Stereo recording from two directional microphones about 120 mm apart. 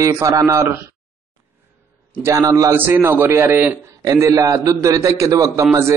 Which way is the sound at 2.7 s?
15° right (ahead or behind).